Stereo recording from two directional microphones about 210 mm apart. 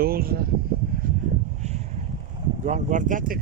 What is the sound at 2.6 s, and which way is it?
Speech, 35° right (ahead or behind).